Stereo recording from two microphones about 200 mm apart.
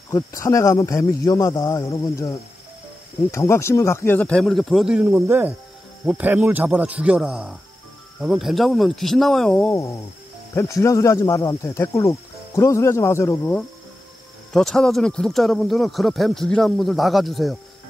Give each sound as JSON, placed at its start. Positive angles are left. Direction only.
{"t": 0.1, "sound": "speech", "side_deg": 15}